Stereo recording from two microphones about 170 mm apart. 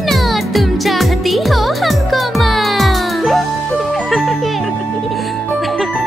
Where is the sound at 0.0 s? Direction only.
Centre (ahead or behind).